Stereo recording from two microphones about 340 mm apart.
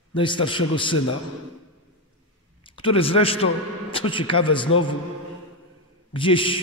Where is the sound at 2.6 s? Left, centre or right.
Centre.